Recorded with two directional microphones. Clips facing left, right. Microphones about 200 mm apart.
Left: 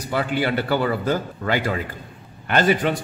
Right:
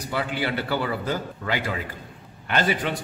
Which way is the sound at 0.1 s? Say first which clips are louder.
Left 5 dB; 50° left (ahead or behind).